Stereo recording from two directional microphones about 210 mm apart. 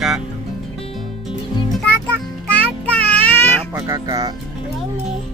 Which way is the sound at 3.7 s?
15° right (ahead or behind).